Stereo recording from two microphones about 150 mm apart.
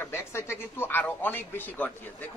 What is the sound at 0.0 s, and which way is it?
A man's voice, 15° left (ahead or behind).